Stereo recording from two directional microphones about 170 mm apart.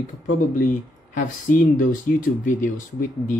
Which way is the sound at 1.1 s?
50° left (ahead or behind).